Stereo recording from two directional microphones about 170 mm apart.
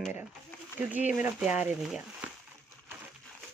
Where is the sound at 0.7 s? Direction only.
10° right (ahead or behind).